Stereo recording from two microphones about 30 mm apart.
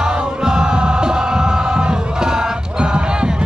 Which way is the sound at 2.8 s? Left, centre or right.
Right.